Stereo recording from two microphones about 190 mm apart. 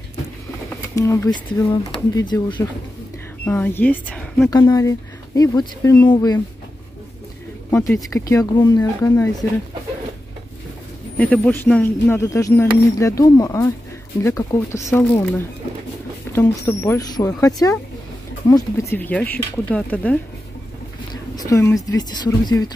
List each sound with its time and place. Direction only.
0.9 s speech: 15° left (ahead or behind)
4.5 s speech: 20° left (ahead or behind)
7.9 s speech: 15° left (ahead or behind)
11.1 s speech: 5° left (ahead or behind)
21.1 s a woman's voice: 20° left (ahead or behind)